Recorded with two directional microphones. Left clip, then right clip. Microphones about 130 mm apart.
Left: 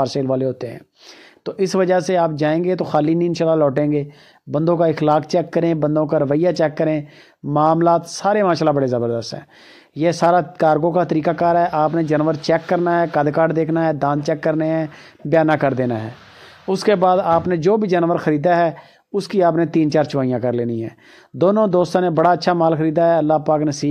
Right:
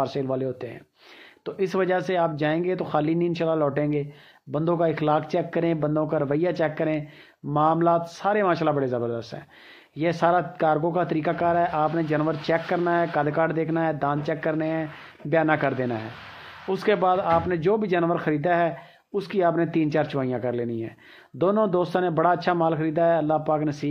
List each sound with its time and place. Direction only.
0.0 s speech: 40° left (ahead or behind)